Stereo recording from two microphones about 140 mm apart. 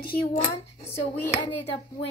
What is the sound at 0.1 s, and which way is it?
Speech, 85° left.